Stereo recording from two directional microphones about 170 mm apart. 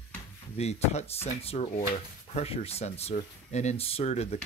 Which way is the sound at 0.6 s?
40° left (ahead or behind).